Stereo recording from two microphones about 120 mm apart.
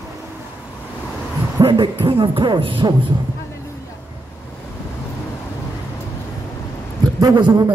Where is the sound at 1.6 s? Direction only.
45° right (ahead or behind).